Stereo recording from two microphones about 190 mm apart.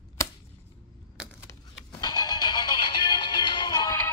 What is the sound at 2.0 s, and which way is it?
Music, 20° left (ahead or behind).